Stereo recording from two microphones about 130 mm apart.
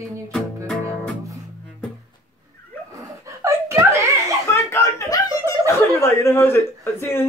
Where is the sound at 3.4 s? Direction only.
20° right (ahead or behind).